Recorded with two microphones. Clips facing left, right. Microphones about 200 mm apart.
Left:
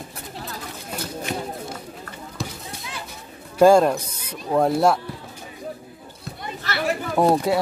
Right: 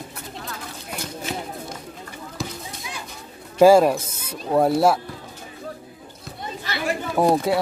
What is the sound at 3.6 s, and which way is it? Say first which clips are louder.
Speech: right 1 dB; 5° right (ahead or behind).